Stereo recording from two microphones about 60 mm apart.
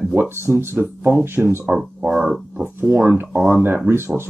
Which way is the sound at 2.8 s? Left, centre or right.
Right.